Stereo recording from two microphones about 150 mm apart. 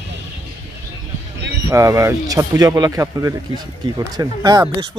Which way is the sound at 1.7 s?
20° right (ahead or behind).